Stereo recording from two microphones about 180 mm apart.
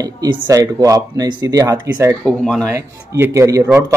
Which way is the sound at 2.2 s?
5° left (ahead or behind).